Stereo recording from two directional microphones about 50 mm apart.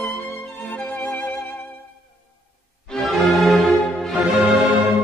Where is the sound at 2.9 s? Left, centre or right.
Centre.